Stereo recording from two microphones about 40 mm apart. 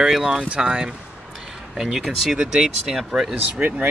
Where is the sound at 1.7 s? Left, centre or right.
Centre.